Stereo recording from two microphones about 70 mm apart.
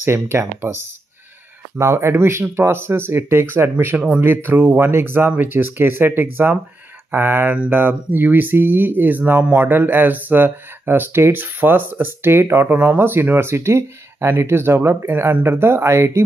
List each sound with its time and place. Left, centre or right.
0.0 s speech: right
1.8 s speech: right